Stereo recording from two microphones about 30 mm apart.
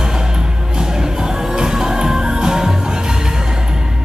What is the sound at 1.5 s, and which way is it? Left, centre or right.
Music, right.